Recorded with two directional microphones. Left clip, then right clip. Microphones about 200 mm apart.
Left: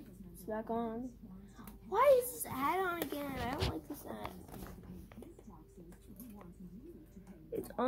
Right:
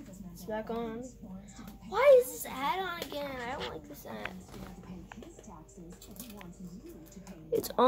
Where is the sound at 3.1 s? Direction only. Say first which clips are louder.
Right 3 dB; 25° left (ahead or behind).